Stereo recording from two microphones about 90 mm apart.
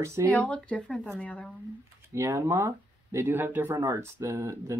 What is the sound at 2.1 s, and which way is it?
Speech, 35° right (ahead or behind).